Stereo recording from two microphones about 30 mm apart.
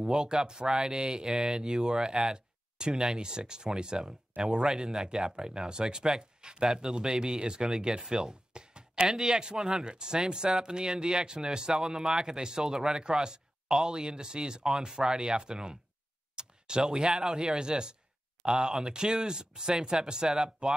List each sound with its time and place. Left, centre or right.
0.0 s speech: right
8.1 s a sound: right
9.1 s speech: right
11.7 s speech: centre
16.3 s tick: right
16.8 s speech: centre